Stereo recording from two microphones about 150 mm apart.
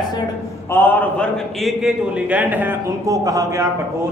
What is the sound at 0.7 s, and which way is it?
A man's voice, 15° left (ahead or behind).